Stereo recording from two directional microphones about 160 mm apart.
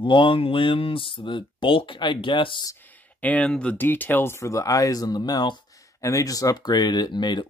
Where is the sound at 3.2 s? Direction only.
10° left (ahead or behind); by 7.4 s 25° left (ahead or behind).